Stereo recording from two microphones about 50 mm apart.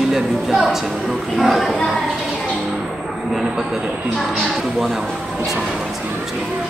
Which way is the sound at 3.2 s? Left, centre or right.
Centre.